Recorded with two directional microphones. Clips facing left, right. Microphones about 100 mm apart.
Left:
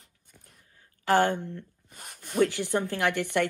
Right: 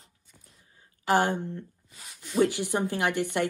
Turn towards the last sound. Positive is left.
turn(degrees=-15)  # may be behind; listen again after turning